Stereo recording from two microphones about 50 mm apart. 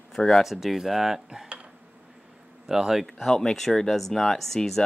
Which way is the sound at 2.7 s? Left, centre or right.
Centre.